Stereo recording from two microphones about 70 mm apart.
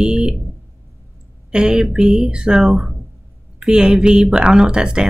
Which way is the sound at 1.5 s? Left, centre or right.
Centre.